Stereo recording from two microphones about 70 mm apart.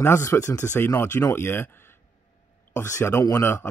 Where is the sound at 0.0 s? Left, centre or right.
Left.